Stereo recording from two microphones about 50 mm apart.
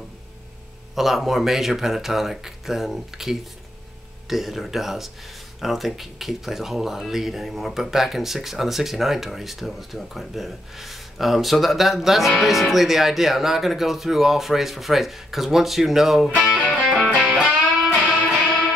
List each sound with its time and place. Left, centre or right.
0.9 s speech: centre
16.8 s music: centre
17.4 s music: centre